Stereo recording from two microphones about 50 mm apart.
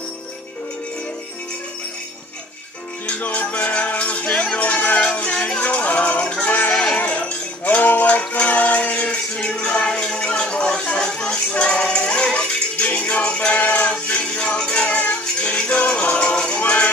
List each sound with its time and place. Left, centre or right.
3.1 s music: left
6.7 s sheep: centre
7.0 s music: left